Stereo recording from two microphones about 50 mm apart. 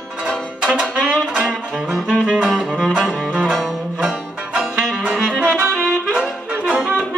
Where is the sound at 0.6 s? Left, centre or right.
Centre.